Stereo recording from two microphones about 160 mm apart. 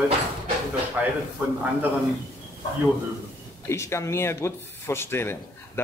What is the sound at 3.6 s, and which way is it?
A man's voice, 15° left (ahead or behind).